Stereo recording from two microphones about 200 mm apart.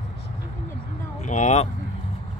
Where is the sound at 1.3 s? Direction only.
35° left (ahead or behind).